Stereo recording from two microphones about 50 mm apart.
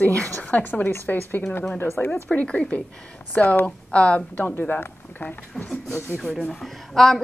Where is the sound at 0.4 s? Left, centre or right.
Left.